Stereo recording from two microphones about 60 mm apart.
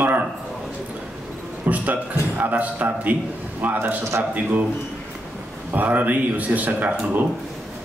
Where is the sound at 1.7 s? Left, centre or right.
Right.